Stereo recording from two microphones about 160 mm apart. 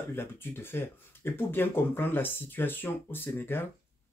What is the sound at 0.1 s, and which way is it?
Speech, 15° left (ahead or behind).